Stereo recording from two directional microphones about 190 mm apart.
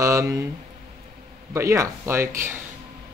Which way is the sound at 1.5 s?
15° right (ahead or behind).